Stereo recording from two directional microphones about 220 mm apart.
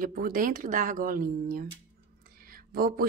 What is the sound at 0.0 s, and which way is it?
Speech, 40° right (ahead or behind).